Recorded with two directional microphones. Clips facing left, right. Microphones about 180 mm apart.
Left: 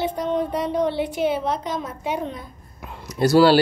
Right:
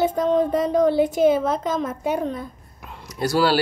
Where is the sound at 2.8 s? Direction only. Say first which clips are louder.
Left 4 dB; 5° left (ahead or behind).